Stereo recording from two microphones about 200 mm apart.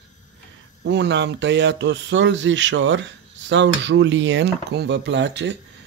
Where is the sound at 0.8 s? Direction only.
60° right (ahead or behind).